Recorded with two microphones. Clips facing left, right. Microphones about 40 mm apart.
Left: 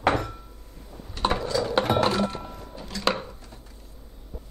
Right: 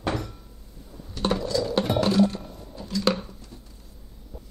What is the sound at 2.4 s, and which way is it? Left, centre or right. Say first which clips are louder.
Music: left 1 dB; left.